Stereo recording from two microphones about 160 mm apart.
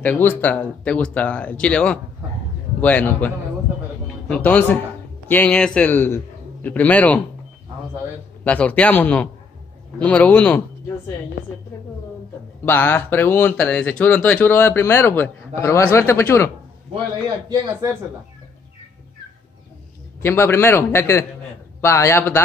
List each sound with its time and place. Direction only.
0.0 s a man's voice: 10° left (ahead or behind)
8.5 s speech: 10° left (ahead or behind)
12.6 s speech: 15° left (ahead or behind)
20.2 s speech: 15° left (ahead or behind)